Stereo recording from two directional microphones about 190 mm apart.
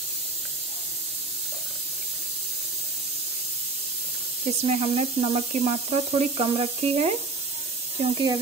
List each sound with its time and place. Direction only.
4.6 s speech: 30° right (ahead or behind)